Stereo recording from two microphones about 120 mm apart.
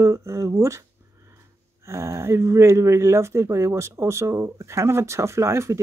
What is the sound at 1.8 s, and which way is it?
Speech, 25° right (ahead or behind).